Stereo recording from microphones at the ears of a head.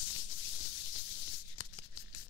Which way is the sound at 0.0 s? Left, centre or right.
Left.